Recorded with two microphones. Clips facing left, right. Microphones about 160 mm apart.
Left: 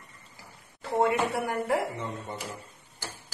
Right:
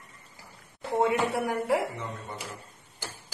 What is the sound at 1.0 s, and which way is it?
Speech, centre (ahead or behind).